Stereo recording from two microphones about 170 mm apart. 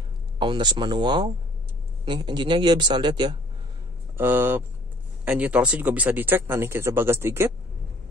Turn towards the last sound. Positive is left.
turn(degrees=-15)  # may be behind; listen again after turning